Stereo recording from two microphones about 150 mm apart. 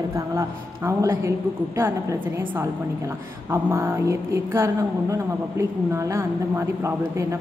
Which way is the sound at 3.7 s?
20° right (ahead or behind).